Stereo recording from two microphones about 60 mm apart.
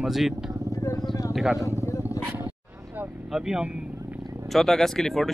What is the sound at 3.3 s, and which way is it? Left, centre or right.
Speech, centre.